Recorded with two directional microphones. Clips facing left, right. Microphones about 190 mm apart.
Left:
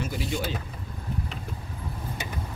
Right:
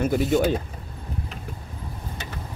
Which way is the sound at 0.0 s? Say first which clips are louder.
Right 10 dB; 50° right (ahead or behind).